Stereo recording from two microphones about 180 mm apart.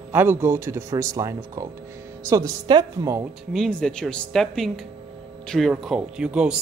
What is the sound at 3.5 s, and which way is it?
A woman's voice, 5° left (ahead or behind).